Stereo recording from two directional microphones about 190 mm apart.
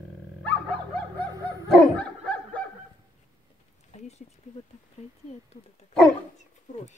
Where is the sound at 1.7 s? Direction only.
5° left (ahead or behind).